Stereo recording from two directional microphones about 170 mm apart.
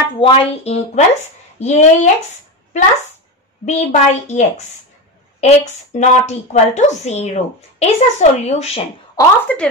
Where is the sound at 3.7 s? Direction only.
40° left (ahead or behind).